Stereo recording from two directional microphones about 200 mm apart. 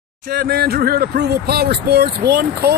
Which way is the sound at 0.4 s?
50° right (ahead or behind).